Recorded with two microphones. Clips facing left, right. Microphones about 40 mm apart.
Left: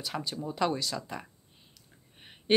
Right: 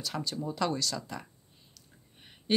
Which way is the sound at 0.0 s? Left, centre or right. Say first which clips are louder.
Even; centre.